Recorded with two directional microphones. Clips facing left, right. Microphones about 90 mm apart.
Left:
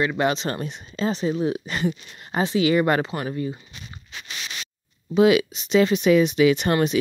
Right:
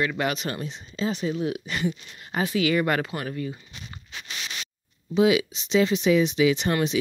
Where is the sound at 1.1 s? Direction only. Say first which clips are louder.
Left 4 dB; 35° left (ahead or behind).